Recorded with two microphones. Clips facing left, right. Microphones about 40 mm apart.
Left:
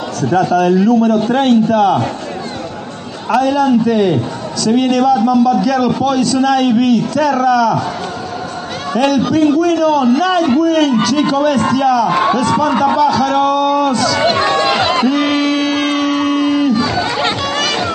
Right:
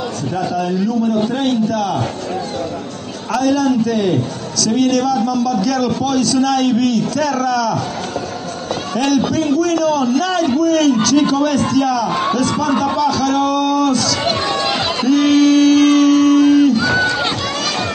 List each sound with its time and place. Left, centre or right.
0.5 s a man's voice: left
3.3 s a man's voice: centre
8.9 s a man's voice: centre
12.2 s a sound: centre